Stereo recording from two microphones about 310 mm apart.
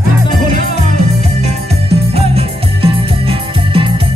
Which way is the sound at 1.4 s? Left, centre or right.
Centre.